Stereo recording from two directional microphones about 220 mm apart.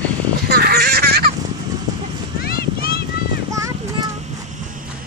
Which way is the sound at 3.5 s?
15° right (ahead or behind).